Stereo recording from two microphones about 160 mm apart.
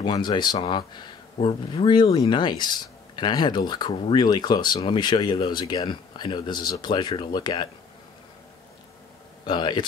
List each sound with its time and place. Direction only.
0.0 s speech: 25° left (ahead or behind)
9.5 s speech: 30° left (ahead or behind)